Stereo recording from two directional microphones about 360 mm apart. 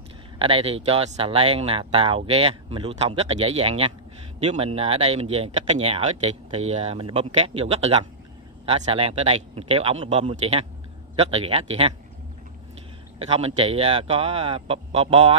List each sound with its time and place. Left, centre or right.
0.4 s speech: centre
13.2 s speech: centre